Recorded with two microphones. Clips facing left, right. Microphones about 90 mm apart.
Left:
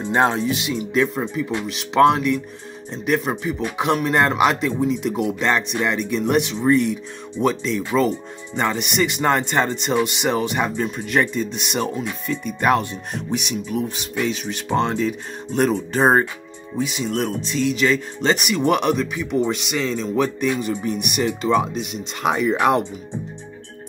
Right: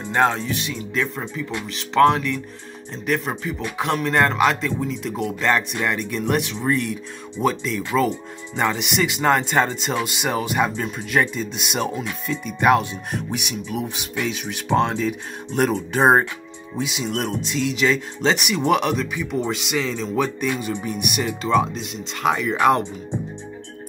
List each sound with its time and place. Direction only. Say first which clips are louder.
0.0 s speech: left 1 dB; 20° left (ahead or behind)